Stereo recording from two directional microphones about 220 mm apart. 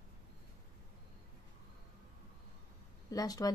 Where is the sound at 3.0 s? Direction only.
15° left (ahead or behind).